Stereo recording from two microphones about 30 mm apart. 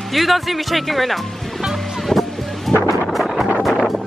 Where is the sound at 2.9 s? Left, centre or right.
Centre.